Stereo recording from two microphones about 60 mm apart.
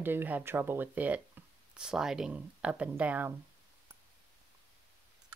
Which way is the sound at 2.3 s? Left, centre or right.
Right.